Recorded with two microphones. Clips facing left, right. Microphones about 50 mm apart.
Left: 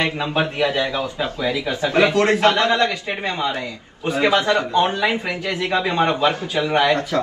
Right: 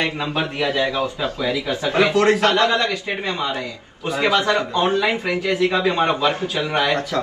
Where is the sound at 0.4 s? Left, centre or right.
Left.